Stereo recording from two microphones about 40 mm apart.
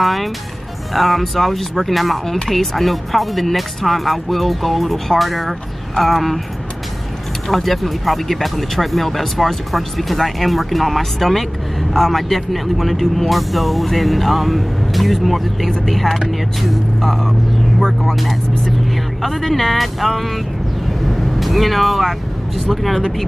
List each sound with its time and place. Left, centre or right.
0.0 s speech: centre
7.4 s speech: centre
19.2 s speech: centre
21.1 s vehicle: centre
22.7 s speech: centre